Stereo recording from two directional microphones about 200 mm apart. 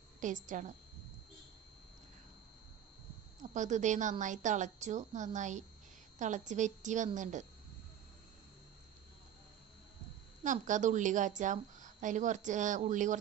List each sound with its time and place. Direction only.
0.2 s a woman's voice: 40° right (ahead or behind)
3.5 s a woman's voice: 40° right (ahead or behind)
10.4 s a woman's voice: 40° right (ahead or behind)